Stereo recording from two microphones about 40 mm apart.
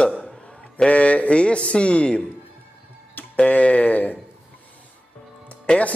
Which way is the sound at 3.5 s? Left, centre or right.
Left.